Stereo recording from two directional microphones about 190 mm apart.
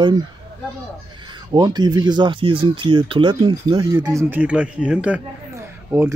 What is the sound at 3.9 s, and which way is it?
A man's voice, 10° right (ahead or behind).